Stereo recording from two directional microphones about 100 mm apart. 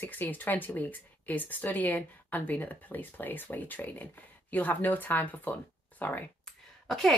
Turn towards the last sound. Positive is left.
turn(degrees=5)  # may be behind; listen again after turning